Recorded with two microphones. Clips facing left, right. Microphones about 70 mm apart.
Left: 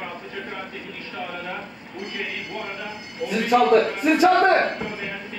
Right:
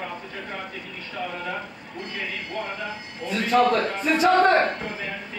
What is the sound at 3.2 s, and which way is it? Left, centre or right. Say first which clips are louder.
Speech: left 1 dB; centre.